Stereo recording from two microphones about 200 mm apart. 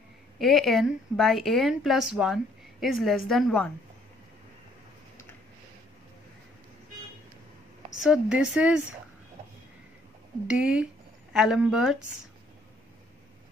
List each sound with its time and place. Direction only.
0.4 s a woman's voice: centre (ahead or behind)
8.0 s a woman's voice: 5° right (ahead or behind)
10.4 s a woman's voice: 5° right (ahead or behind)